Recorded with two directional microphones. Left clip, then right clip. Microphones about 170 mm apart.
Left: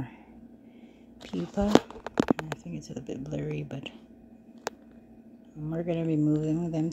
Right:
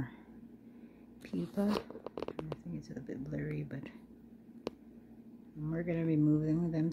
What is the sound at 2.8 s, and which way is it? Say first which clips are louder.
Speech: left 6 dB; 20° left (ahead or behind).